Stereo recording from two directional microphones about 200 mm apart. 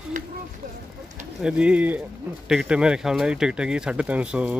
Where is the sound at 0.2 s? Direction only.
40° right (ahead or behind).